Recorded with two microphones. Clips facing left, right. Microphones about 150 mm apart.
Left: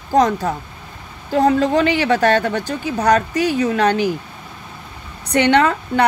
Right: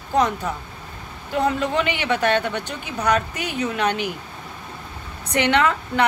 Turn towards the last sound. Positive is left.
turn(degrees=35)  # may be behind; listen again after turning